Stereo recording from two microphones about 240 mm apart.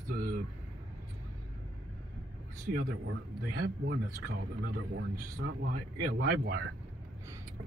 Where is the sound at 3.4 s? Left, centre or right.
Right.